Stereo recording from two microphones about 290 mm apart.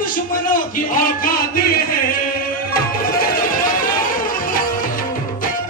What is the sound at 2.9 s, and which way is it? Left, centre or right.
Music, left.